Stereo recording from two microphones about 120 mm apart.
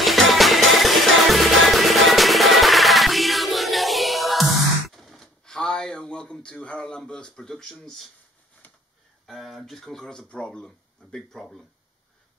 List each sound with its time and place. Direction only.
0.0 s music: centre (ahead or behind)
8.6 s a sound: 15° left (ahead or behind)
9.2 s speech: centre (ahead or behind)